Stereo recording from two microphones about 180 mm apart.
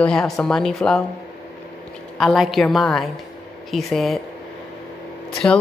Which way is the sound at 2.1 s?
Centre (ahead or behind).